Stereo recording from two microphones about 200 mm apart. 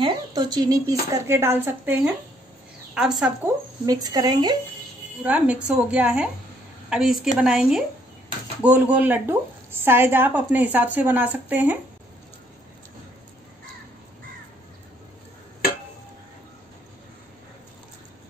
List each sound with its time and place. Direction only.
0.0 s a woman's voice: 20° right (ahead or behind); by 3.1 s 5° right (ahead or behind)
3.8 s speech: 20° right (ahead or behind)
5.2 s a woman's voice: 5° right (ahead or behind)